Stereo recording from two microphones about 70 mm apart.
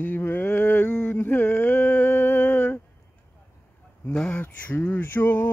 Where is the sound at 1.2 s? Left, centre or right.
Left.